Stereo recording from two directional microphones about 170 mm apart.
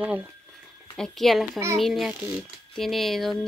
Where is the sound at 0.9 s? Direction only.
Centre (ahead or behind).